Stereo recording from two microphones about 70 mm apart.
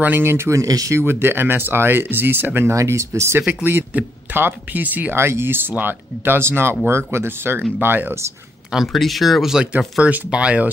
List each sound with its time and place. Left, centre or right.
0.0 s speech: right
0.5 s speech: right
0.9 s speech: right
2.7 s speech: right
3.4 s speech: right
5.1 s speech: right
8.7 s speech: centre
10.0 s speech: centre